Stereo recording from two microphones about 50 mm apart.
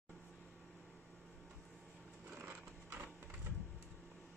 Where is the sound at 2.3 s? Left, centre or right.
Right.